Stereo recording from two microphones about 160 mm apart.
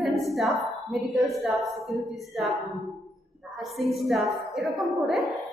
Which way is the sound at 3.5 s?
Centre (ahead or behind).